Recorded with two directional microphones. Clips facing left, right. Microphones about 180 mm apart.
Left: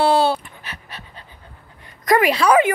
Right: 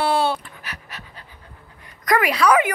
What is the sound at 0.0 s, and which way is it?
Dog, 30° left (ahead or behind).